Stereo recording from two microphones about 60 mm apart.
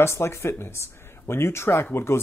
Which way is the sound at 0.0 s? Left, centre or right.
Left.